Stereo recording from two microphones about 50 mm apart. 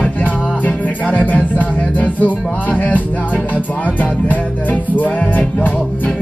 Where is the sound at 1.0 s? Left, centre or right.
Left.